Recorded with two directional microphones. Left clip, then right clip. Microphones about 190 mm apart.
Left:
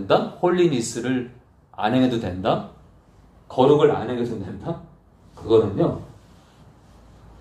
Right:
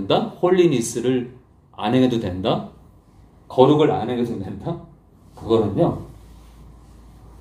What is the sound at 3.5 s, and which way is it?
A man's voice, 10° right (ahead or behind).